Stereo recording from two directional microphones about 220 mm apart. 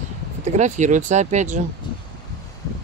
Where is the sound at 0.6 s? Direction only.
35° right (ahead or behind).